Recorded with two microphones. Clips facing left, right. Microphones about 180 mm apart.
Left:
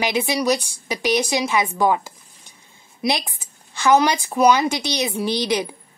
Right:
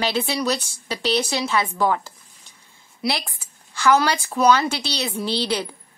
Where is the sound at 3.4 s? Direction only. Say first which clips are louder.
Even; 20° left (ahead or behind).